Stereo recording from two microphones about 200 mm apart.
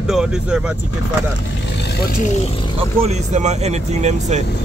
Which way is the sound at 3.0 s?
35° right (ahead or behind).